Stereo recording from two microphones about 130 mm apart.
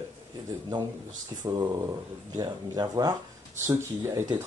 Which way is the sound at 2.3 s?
30° right (ahead or behind).